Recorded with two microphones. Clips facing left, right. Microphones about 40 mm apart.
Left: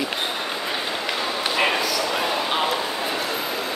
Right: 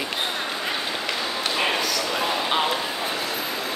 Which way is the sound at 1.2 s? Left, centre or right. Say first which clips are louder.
Left 3 dB; centre.